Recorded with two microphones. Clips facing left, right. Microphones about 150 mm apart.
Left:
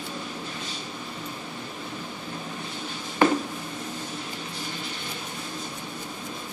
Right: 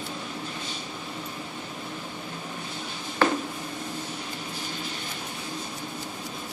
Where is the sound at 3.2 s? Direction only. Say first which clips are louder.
Left 3 dB; 15° left (ahead or behind).